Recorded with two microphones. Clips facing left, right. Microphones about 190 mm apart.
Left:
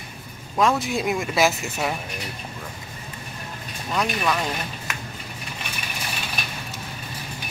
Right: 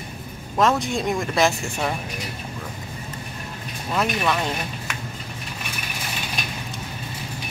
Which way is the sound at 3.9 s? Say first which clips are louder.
Right 1 dB; centre (ahead or behind).